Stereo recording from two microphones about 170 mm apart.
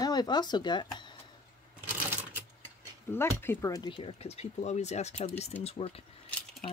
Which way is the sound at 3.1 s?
15° left (ahead or behind).